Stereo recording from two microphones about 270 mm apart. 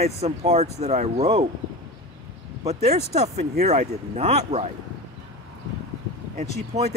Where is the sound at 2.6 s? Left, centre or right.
Right.